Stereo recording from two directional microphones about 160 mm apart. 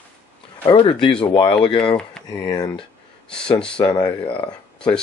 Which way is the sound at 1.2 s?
30° left (ahead or behind).